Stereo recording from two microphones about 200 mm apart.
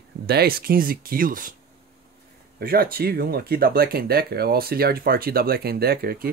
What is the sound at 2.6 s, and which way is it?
Speech, 50° right (ahead or behind).